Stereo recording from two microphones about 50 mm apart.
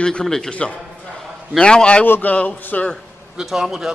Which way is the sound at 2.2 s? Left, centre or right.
Left.